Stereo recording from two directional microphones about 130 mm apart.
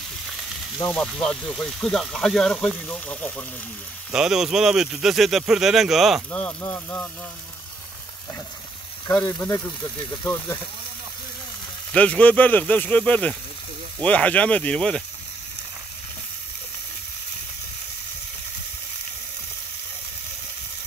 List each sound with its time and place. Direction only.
0.9 s speech: 5° left (ahead or behind)
4.1 s speech: 5° right (ahead or behind)
6.6 s speech: 15° left (ahead or behind)
9.0 s speech: 30° left (ahead or behind)
10.2 s speech: 20° left (ahead or behind)
11.9 s speech: 10° left (ahead or behind)